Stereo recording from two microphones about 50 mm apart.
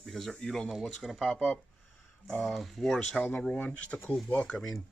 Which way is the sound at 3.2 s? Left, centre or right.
Left.